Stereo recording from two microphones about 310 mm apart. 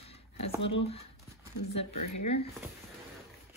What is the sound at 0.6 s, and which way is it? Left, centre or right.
Speech, left.